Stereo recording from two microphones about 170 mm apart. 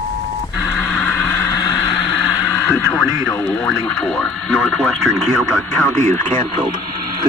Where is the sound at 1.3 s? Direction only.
20° left (ahead or behind).